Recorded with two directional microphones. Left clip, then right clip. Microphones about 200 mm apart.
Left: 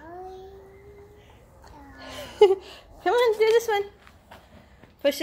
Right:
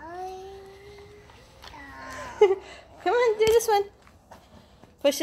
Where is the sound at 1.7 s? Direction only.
15° left (ahead or behind).